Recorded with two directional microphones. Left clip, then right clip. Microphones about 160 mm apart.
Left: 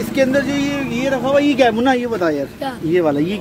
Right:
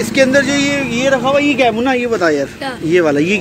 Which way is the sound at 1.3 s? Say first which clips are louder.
Left 3 dB; 30° left (ahead or behind).